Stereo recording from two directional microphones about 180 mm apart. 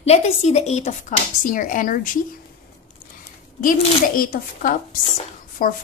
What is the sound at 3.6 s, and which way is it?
A woman's voice, 50° left (ahead or behind).